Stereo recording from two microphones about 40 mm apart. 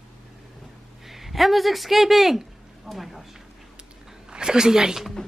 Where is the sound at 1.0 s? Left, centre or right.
Centre.